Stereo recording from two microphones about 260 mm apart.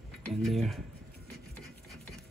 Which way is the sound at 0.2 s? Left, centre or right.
Centre.